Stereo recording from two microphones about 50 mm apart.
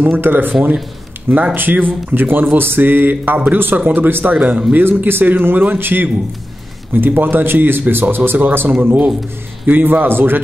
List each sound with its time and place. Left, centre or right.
0.0 s speech: right